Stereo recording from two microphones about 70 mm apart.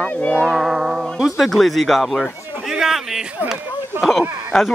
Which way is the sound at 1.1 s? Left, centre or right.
Centre.